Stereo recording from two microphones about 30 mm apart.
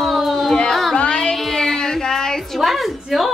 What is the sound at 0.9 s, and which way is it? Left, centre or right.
Speech, left.